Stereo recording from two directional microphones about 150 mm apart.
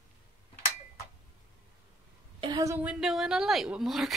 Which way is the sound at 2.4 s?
25° right (ahead or behind).